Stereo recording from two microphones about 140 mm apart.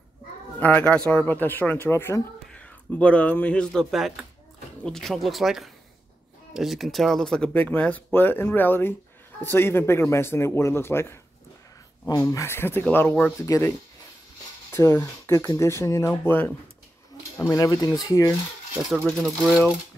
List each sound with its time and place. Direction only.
0.6 s speech: 10° left (ahead or behind)
12.2 s speech: 20° left (ahead or behind)
19.0 s speech: centre (ahead or behind)